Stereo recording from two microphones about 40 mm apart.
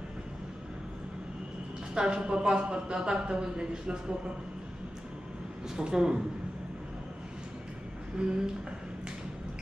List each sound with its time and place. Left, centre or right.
2.0 s a woman's voice: right
5.8 s a woman's voice: centre
8.2 s a woman's voice: right